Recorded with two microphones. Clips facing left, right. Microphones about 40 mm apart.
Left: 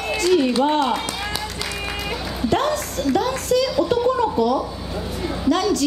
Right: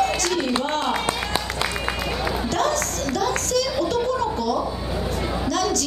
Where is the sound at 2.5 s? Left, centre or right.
Centre.